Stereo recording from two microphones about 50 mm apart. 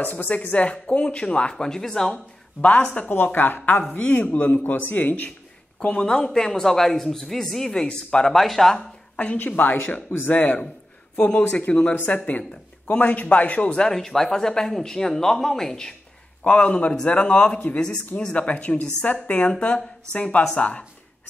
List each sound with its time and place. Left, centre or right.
0.0 s speech: left; by 2.1 s centre
2.6 s speech: left
3.1 s speech: left
5.8 s a man's voice: centre
8.3 s speech: centre
8.7 s a woman's voice: left
11.9 s speech: left
13.8 s a man's voice: centre
16.4 s speech: left
17.7 s a man's voice: centre
18.3 s speech: left